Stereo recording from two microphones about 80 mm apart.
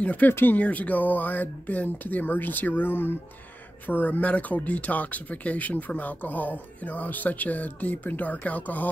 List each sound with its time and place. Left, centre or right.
0.0 s speech: centre